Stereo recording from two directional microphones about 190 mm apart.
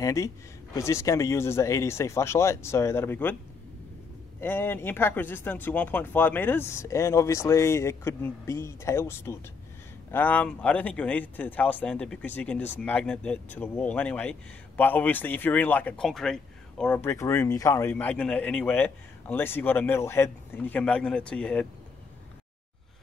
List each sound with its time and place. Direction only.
0.0 s speech: 15° left (ahead or behind)
4.4 s speech: 10° left (ahead or behind)